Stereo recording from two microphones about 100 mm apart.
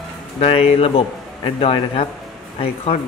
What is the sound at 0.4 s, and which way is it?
A man's voice, 75° left (ahead or behind).